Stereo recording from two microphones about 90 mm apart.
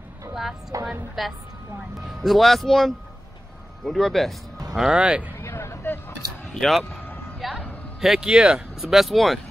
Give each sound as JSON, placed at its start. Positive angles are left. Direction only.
{"t": 0.3, "sound": "speech", "side_deg": -5}
{"t": 5.4, "sound": "hubbub", "side_deg": 30}
{"t": 6.5, "sound": "speech", "side_deg": 0}
{"t": 7.3, "sound": "a sound", "side_deg": 0}
{"t": 8.0, "sound": "speech", "side_deg": -5}